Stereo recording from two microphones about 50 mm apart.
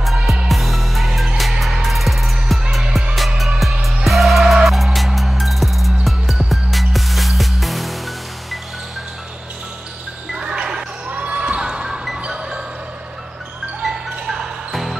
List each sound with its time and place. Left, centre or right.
0.0 s music: centre
10.3 s music: centre
11.1 s basketball bounce: right; by 12.1 s centre
12.2 s music: centre
13.8 s music: centre